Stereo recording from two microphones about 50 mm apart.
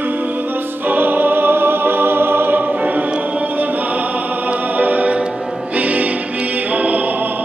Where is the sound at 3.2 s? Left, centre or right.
Right.